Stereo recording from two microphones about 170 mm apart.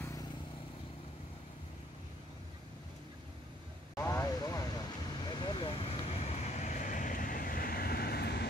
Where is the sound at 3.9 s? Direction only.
15° left (ahead or behind).